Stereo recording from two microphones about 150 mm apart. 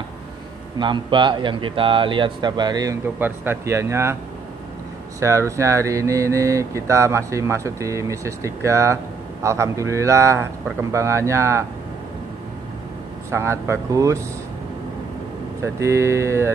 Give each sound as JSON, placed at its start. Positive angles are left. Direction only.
{"t": 0.7, "sound": "speech", "side_deg": -30}
{"t": 3.2, "sound": "speech", "side_deg": -15}
{"t": 5.2, "sound": "mantra", "side_deg": -20}
{"t": 13.3, "sound": "mantra", "side_deg": -15}
{"t": 15.6, "sound": "mantra", "side_deg": -20}